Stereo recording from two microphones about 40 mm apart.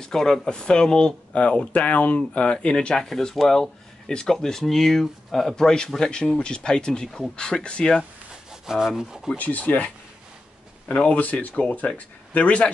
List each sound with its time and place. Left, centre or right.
0.0 s speech: centre
1.3 s speech: left
3.0 s speech: centre
5.9 s speech: centre
8.6 s rub: centre
9.4 s speech: left
11.0 s speech: left